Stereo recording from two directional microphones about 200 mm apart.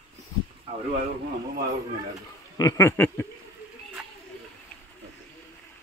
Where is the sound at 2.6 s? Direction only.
15° left (ahead or behind).